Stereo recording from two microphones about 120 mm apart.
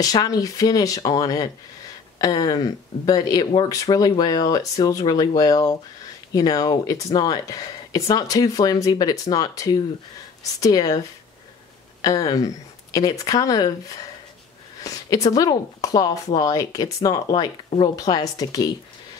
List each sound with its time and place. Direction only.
0.0 s speech: 30° left (ahead or behind)
12.0 s speech: 30° left (ahead or behind)